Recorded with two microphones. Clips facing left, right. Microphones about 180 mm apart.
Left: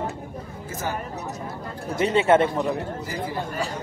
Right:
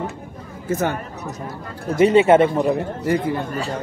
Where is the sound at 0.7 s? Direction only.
70° right (ahead or behind).